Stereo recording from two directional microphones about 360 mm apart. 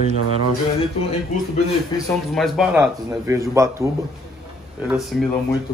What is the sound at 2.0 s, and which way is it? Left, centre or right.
A man's voice, centre.